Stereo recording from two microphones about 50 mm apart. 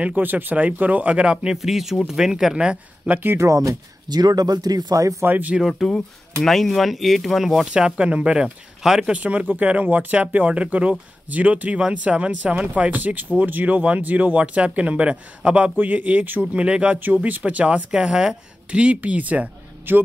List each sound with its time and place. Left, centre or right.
0.0 s speech: right; by 1.6 s centre
1.6 s speech: centre; by 3.2 s right
3.3 s speech: right
4.9 s speech: right
5.2 s speech: right
5.6 s speech: centre
8.0 s speech: right
8.8 s speech: centre
9.1 s speech: right
16.5 s speech: right
17.0 s speech: right
19.9 s speech: right